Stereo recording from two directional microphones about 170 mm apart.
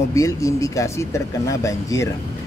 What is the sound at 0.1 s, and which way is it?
Speech, 20° left (ahead or behind).